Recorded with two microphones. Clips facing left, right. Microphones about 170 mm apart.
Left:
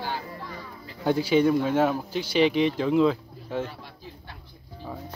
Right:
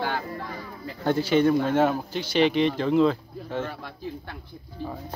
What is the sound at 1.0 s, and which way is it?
Speech, 10° left (ahead or behind).